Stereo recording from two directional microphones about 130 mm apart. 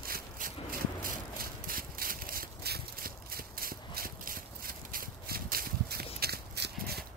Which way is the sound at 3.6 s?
90° right.